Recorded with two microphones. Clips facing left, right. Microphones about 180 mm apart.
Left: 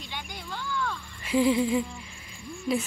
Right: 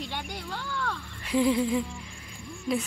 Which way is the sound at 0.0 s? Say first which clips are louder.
Right 4 dB; 60° right (ahead or behind).